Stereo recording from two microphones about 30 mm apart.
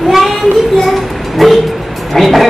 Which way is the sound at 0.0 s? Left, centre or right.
Centre.